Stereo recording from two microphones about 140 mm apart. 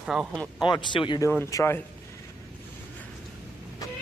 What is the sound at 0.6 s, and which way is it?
Speech, 35° left (ahead or behind).